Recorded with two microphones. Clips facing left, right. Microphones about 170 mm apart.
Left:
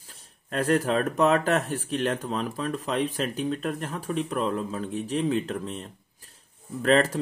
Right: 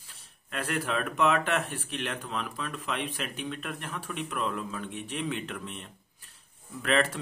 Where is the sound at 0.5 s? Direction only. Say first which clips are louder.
Left 8 dB; 40° left (ahead or behind).